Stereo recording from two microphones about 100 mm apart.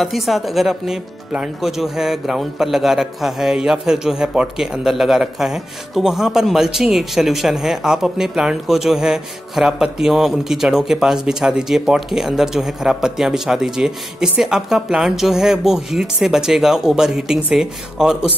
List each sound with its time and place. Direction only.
0.0 s speech: centre (ahead or behind)